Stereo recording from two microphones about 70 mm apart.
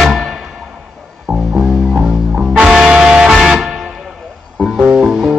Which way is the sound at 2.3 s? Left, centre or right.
Centre.